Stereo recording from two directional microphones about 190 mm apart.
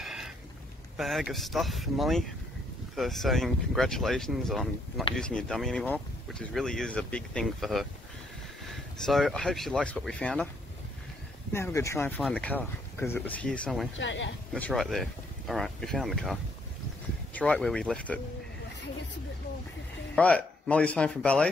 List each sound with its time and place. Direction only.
0.0 s a sound: centre (ahead or behind)
0.9 s speech: centre (ahead or behind)
8.9 s speech: centre (ahead or behind)
11.5 s speech: 15° left (ahead or behind)
13.9 s speech: 75° left (ahead or behind)
14.5 s speech: centre (ahead or behind)
20.2 s speech: 5° left (ahead or behind)